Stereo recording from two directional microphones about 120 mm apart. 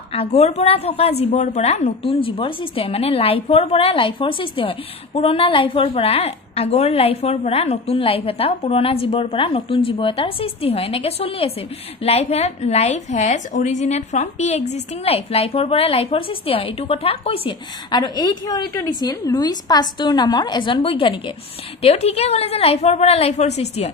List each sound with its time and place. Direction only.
0.1 s a woman's voice: 55° left (ahead or behind)
17.9 s a woman's voice: 35° left (ahead or behind)
21.8 s a woman's voice: 60° left (ahead or behind)